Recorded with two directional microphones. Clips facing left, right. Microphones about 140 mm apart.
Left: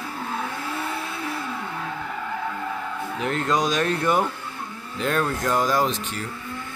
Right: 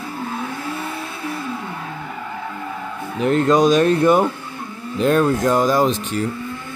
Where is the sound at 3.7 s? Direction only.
25° right (ahead or behind).